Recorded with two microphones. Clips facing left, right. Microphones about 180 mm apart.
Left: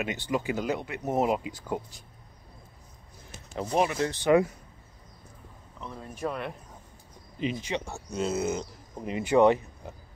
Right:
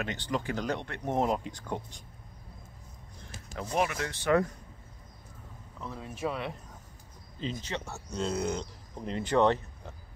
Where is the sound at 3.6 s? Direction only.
25° left (ahead or behind).